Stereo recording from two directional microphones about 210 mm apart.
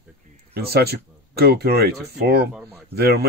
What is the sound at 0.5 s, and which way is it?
Speech, 50° right (ahead or behind).